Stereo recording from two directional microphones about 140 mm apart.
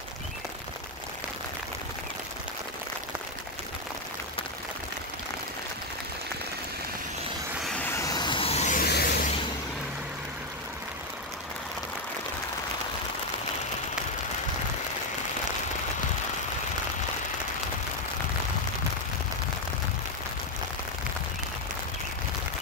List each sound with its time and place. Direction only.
7.6 s vehicle: 5° left (ahead or behind)
7.9 s vehicle: 25° left (ahead or behind); by 8.7 s 50° left (ahead or behind)
8.7 s a sound: 85° left